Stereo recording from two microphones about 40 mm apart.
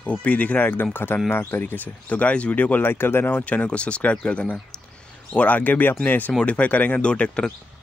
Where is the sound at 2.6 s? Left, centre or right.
Left.